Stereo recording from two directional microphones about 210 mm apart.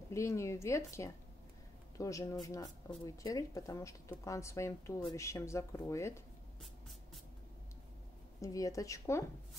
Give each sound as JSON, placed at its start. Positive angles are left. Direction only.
{"t": 0.1, "sound": "speech", "side_deg": 15}
{"t": 8.4, "sound": "speech", "side_deg": 15}